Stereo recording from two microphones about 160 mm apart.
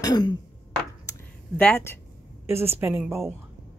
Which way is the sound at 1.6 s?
10° left (ahead or behind).